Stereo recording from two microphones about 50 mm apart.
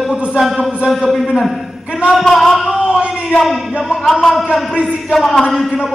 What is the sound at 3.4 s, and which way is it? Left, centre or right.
A man's voice, centre.